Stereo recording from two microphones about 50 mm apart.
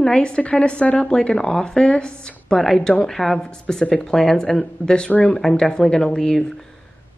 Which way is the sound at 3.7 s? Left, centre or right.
Left.